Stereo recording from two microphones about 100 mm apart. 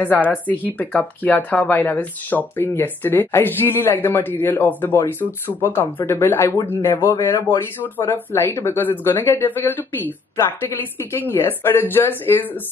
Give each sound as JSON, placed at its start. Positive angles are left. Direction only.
{"t": 0.0, "sound": "speech", "side_deg": 15}
{"t": 11.2, "sound": "speech", "side_deg": 20}